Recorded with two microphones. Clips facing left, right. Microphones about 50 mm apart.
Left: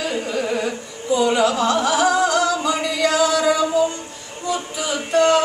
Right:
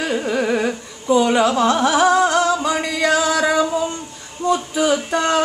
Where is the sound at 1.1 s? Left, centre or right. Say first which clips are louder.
Right 2 dB; right.